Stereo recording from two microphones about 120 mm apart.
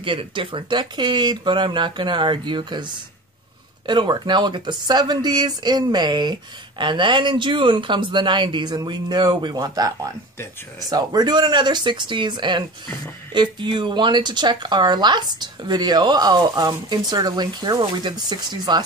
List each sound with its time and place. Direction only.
0.0 s speech: 45° right (ahead or behind)